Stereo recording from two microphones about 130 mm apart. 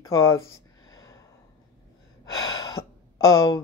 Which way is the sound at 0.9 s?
25° left (ahead or behind).